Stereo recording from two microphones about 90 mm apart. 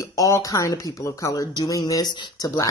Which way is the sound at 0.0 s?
35° left (ahead or behind).